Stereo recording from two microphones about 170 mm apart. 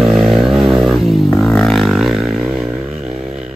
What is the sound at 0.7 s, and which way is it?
Didgeridoo, 5° right (ahead or behind).